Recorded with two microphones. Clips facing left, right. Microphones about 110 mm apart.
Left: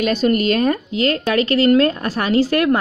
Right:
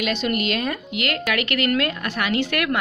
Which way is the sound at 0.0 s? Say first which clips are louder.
Left 7 dB; 40° left (ahead or behind).